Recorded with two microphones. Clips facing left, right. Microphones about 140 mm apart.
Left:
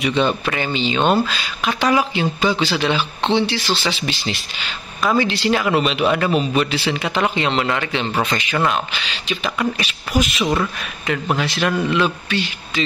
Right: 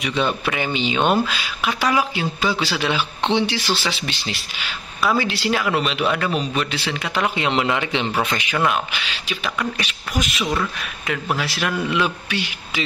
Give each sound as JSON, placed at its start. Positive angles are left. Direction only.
{"t": 0.0, "sound": "speech", "side_deg": 0}
{"t": 7.4, "sound": "speech", "side_deg": -15}